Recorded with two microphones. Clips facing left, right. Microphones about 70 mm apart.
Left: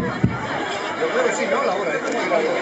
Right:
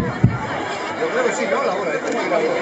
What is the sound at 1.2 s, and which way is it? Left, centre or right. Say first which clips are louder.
Speech: right 1 dB; centre.